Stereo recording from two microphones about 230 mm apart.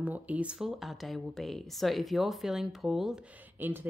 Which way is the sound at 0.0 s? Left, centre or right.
Centre.